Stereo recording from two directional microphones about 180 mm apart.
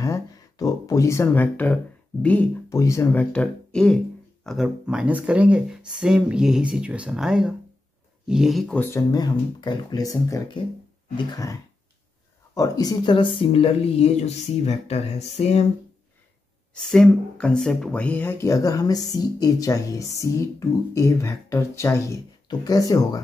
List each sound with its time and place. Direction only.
0.0 s speech: 20° left (ahead or behind)
12.5 s speech: 20° left (ahead or behind); by 15.6 s 35° left (ahead or behind)
16.7 s speech: centre (ahead or behind); by 23.2 s 20° left (ahead or behind)